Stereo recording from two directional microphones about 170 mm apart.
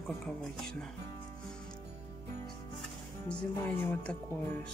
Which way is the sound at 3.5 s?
15° left (ahead or behind).